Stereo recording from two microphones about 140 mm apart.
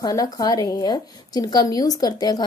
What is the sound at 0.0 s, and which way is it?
A woman's voice, 25° left (ahead or behind).